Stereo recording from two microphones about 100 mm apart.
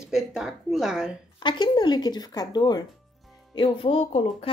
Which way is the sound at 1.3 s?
50° left (ahead or behind).